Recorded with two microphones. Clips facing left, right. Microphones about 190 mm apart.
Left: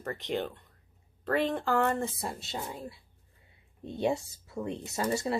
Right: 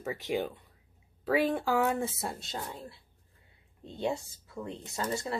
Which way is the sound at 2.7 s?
15° left (ahead or behind).